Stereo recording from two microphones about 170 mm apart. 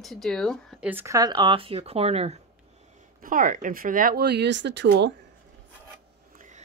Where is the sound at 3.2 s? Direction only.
55° right (ahead or behind); by 5.1 s 85° right.